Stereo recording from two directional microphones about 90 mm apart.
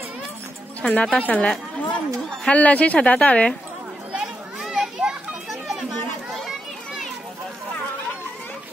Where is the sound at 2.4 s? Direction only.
15° left (ahead or behind).